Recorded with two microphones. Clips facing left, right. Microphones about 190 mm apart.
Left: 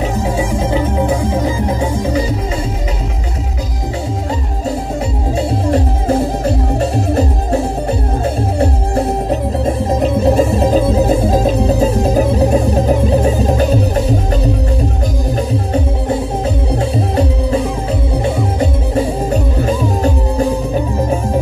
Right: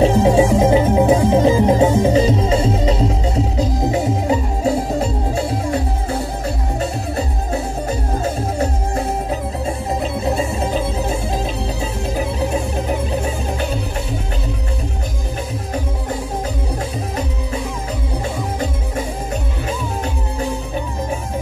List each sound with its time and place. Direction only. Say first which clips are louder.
0.0 s music: right 5 dB; 25° right (ahead or behind)
10.0 s music: left 9 dB; 80° left
10.6 s music: left 8 dB; 40° left (ahead or behind)